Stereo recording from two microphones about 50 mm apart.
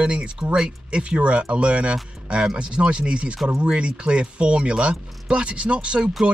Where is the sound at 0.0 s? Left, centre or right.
Right.